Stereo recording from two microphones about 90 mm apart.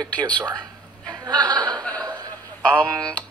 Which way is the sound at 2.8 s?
10° left (ahead or behind).